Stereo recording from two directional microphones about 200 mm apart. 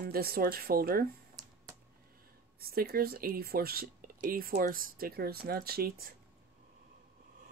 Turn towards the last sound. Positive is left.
turn(degrees=-50)  # may be behind; listen again after turning